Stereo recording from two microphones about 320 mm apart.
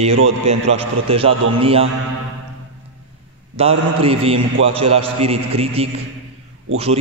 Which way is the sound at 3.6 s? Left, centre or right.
Centre.